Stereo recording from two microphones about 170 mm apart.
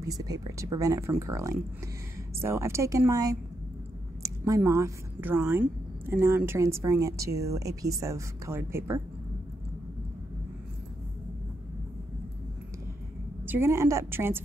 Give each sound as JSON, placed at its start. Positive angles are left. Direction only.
{"t": 0.0, "sound": "speech", "side_deg": -20}
{"t": 13.5, "sound": "speech", "side_deg": -15}